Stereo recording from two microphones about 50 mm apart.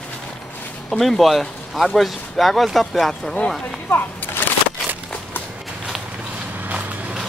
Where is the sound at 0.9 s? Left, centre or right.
Centre.